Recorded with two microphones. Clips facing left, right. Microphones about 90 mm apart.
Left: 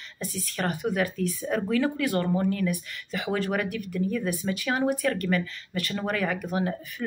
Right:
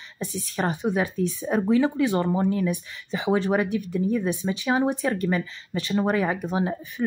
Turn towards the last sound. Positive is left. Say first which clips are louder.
# right 3 dB
turn(degrees=-20)  # may be behind; listen again after turning